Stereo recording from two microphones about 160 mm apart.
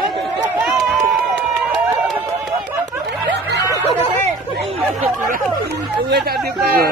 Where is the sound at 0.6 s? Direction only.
Centre (ahead or behind).